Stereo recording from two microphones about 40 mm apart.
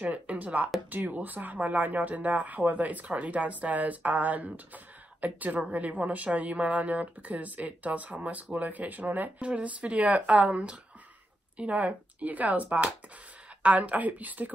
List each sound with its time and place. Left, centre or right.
0.0 s speech: right
0.8 s speech: right
9.4 s speech: right